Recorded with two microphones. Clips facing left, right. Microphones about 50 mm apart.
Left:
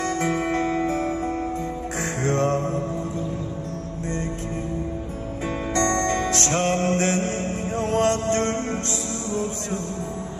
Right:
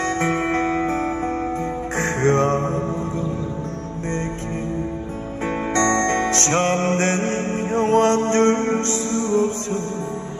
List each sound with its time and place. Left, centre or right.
0.0 s music: right
5.8 s music: right